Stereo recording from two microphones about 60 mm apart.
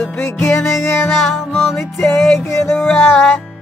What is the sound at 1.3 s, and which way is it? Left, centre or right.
Music, centre.